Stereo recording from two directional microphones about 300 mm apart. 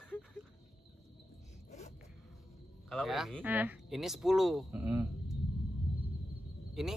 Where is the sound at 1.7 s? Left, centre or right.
Left.